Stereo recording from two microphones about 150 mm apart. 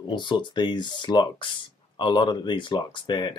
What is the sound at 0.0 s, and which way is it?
Speech, 30° left (ahead or behind).